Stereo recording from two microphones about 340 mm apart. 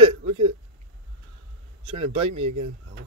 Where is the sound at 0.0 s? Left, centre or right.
Centre.